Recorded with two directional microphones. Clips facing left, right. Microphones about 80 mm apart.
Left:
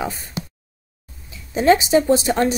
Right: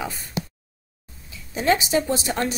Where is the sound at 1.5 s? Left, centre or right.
Left.